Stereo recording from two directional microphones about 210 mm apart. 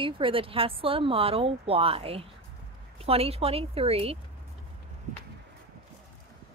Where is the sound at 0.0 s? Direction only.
25° right (ahead or behind).